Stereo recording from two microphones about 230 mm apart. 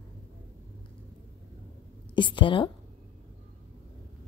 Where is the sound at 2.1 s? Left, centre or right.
Left.